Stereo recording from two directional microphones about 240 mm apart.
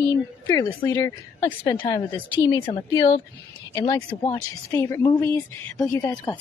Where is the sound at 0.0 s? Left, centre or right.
Centre.